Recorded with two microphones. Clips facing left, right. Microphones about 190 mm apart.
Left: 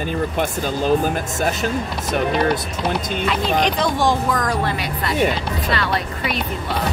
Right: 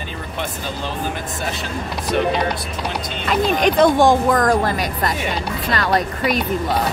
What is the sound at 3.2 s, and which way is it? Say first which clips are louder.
Speech: right 4 dB; 50° right (ahead or behind).